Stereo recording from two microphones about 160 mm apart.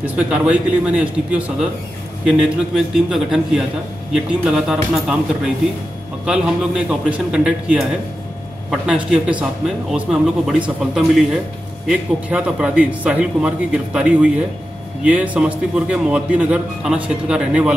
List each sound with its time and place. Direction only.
0.0 s a man's voice: 5° right (ahead or behind)
2.2 s a man's voice: centre (ahead or behind)